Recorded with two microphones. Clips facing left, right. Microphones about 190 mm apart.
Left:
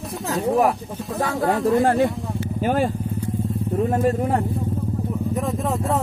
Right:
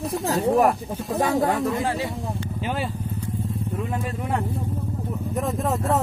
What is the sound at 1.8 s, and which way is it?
Speech, 50° left (ahead or behind).